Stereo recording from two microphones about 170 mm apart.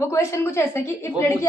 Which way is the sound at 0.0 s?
15° left (ahead or behind).